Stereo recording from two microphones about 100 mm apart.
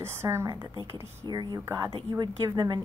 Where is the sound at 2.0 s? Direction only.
45° right (ahead or behind).